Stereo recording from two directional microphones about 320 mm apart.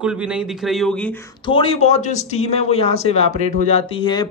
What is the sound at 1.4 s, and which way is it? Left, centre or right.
Speech, centre.